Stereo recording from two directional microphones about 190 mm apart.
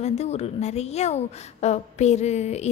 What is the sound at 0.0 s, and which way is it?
A woman's voice, 35° left (ahead or behind).